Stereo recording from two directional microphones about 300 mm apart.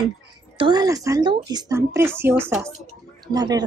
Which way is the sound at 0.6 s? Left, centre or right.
Centre.